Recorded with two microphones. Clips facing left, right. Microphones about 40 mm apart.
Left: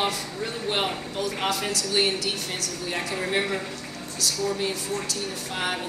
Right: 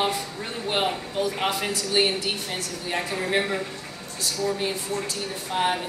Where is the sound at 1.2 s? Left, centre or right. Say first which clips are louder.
Even; right.